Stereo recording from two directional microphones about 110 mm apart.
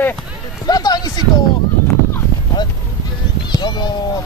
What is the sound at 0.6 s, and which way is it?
Speech, 35° left (ahead or behind).